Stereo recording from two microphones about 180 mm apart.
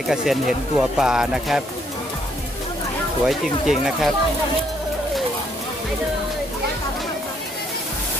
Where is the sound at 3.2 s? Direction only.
Centre (ahead or behind).